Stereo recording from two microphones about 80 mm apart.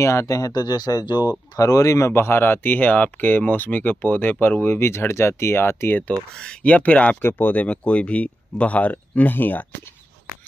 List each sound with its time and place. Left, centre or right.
0.0 s speech: left
1.6 s speech: left
5.9 s speech: centre